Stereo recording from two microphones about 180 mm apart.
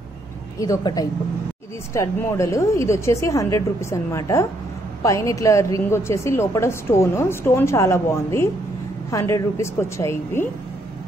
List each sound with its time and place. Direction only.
0.6 s a woman's voice: 20° left (ahead or behind)